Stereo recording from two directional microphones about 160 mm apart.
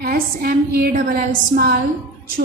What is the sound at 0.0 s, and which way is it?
A woman's voice, 65° right (ahead or behind).